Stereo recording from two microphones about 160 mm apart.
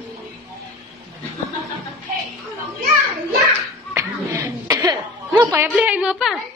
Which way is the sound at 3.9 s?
20° right (ahead or behind).